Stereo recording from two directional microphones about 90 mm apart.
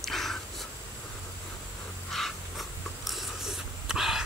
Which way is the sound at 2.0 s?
Centre (ahead or behind).